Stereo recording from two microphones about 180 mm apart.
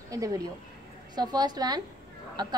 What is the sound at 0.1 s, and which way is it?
A woman's voice, 20° right (ahead or behind).